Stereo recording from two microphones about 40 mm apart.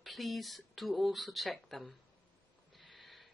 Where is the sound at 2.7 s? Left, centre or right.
Centre.